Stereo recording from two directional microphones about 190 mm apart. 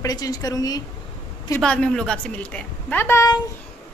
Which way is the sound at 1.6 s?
5° left (ahead or behind).